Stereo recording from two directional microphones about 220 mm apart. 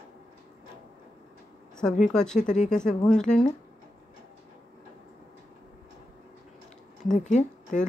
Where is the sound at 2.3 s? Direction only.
35° left (ahead or behind).